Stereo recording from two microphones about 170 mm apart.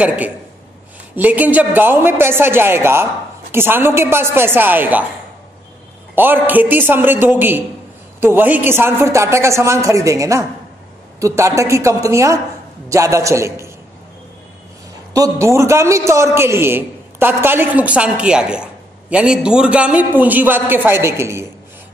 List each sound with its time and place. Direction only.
0.0 s a man's voice: 10° right (ahead or behind)
6.1 s a man's voice: 10° right (ahead or behind)
15.1 s a man's voice: 20° right (ahead or behind)